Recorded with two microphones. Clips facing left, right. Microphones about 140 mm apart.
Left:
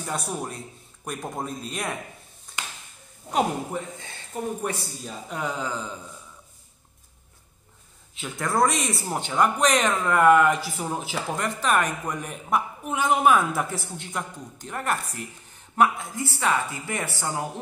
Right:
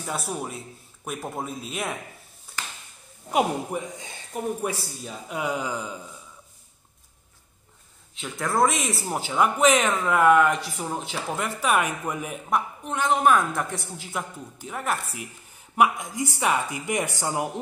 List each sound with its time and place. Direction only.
0.0 s speech: centre (ahead or behind)
2.5 s a sound: 10° right (ahead or behind)
3.3 s speech: 10° right (ahead or behind)
8.1 s speech: centre (ahead or behind)
15.7 s speech: 15° right (ahead or behind)